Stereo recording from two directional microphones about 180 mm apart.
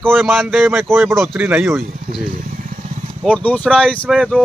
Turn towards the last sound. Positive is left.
turn(degrees=5)  # may be behind; listen again after turning